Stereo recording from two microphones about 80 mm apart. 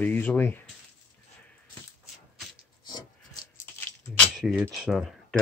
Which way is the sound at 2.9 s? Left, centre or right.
Left.